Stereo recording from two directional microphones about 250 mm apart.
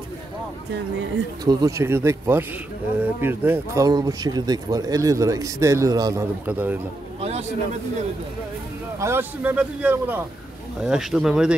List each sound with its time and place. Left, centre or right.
1.4 s speech: centre
7.2 s a sound: right
9.0 s speech: centre